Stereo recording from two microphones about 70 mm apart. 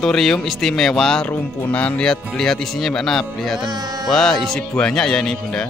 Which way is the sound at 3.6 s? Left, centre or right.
Right.